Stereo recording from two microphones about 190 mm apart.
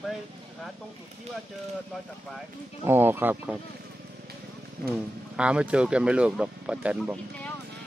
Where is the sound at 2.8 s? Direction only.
10° right (ahead or behind).